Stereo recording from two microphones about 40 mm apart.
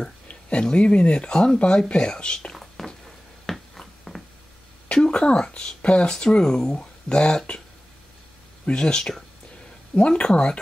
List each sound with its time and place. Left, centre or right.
0.3 s speech: left
2.5 s a sound: centre
3.4 s finger snapping: centre
4.1 s a sound: centre
4.9 s speech: left
8.6 s speech: left